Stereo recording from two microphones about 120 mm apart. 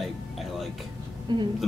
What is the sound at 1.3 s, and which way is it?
Speech, 40° right (ahead or behind).